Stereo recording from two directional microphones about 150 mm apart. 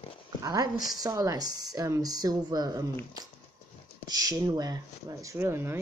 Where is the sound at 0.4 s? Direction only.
25° right (ahead or behind).